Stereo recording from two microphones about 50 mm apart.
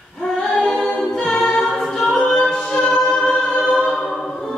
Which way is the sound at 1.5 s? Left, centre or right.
Centre.